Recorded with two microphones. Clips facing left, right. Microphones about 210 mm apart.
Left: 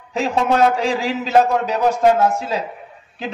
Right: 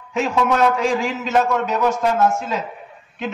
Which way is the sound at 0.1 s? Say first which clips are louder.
Left 1 dB; 35° left (ahead or behind).